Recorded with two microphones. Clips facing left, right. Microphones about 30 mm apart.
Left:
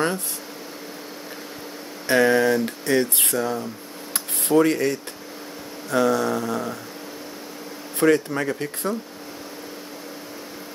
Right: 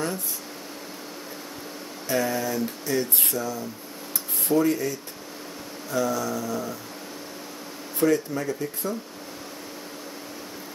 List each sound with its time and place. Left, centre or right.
2.0 s speech: left
4.1 s a sound: left
5.9 s speech: left
8.0 s speech: left